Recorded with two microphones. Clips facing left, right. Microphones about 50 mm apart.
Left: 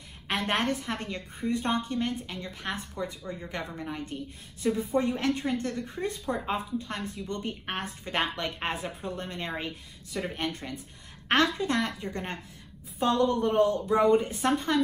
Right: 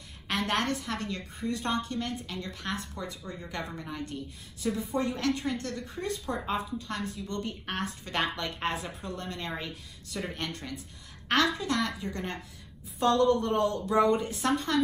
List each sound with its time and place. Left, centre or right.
0.5 s a woman's voice: left
13.0 s a woman's voice: centre